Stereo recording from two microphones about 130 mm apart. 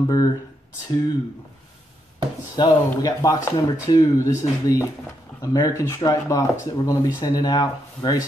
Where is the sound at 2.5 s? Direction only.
30° left (ahead or behind).